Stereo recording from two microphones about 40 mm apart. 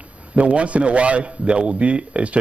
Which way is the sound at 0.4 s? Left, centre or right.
Right.